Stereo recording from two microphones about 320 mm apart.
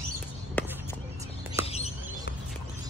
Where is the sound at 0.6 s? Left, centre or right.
Centre.